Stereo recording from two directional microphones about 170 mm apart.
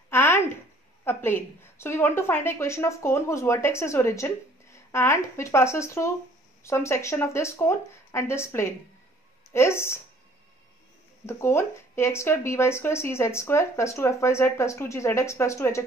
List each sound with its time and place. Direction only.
0.1 s a sound: 15° left (ahead or behind)
1.0 s speech: 15° left (ahead or behind)
11.2 s speech: 15° left (ahead or behind)